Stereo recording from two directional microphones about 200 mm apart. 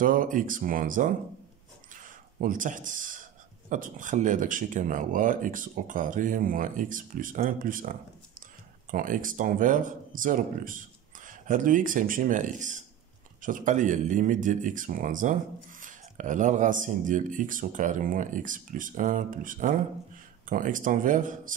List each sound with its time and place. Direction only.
0.0 s speech: 40° right (ahead or behind)